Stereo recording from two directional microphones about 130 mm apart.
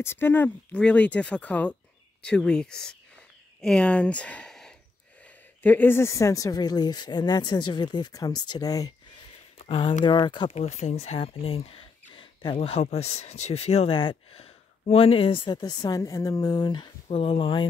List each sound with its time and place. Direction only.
0.0 s speech: 15° left (ahead or behind)
9.6 s speech: 45° left (ahead or behind)